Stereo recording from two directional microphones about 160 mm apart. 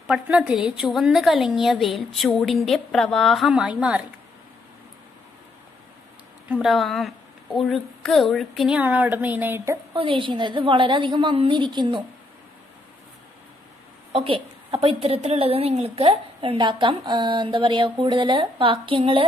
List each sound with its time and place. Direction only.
0.0 s a woman's voice: 5° right (ahead or behind)
6.5 s a woman's voice: centre (ahead or behind)
9.9 s a woman's voice: 35° right (ahead or behind)
14.1 s a woman's voice: 35° right (ahead or behind)